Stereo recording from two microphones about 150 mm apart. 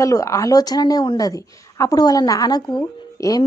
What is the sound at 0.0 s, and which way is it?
Speech, 20° left (ahead or behind).